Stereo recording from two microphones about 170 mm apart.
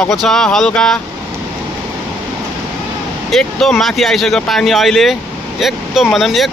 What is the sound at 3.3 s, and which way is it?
Speech, centre (ahead or behind).